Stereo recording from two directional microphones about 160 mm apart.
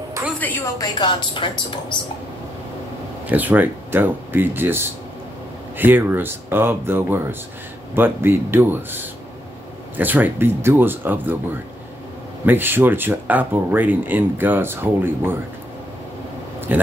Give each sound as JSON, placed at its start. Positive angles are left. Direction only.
{"t": 0.7, "sound": "a woman's voice", "side_deg": 25}
{"t": 3.3, "sound": "speech", "side_deg": -10}
{"t": 12.4, "sound": "speech", "side_deg": -15}
{"t": 16.7, "sound": "speech", "side_deg": -10}